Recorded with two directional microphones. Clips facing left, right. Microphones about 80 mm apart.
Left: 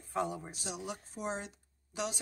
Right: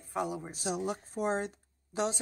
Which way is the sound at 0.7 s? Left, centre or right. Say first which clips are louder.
Right 8 dB; right.